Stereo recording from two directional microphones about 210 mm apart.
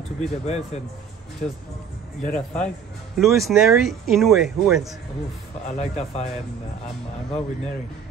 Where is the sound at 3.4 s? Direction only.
Centre (ahead or behind).